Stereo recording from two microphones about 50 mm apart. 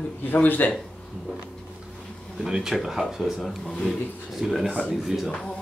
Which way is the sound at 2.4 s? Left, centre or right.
Centre.